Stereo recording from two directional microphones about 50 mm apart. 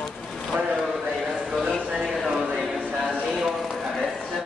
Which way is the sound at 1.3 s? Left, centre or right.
Centre.